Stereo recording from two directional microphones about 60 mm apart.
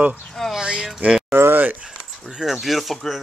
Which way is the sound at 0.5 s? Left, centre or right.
Centre.